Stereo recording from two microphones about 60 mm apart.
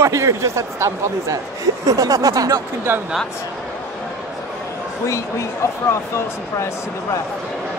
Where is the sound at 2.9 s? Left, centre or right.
Right.